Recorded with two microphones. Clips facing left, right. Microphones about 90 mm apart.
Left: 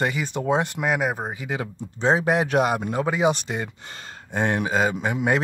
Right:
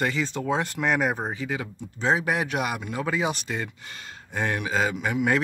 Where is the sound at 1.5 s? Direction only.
25° left (ahead or behind).